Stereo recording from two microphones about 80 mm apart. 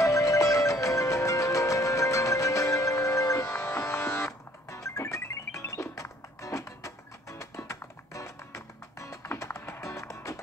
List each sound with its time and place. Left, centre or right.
0.0 s music: left